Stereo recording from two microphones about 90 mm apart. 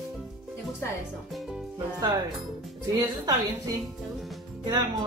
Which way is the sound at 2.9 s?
45° right (ahead or behind).